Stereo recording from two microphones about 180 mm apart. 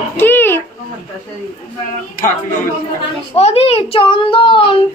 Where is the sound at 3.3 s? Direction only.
35° left (ahead or behind).